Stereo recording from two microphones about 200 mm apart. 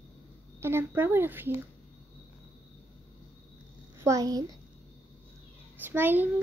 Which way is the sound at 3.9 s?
15° right (ahead or behind).